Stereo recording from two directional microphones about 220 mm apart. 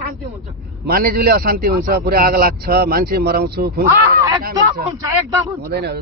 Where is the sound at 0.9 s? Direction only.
40° right (ahead or behind).